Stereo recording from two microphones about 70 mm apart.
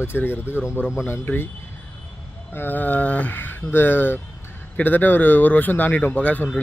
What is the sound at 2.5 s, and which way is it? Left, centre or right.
A man's voice, left.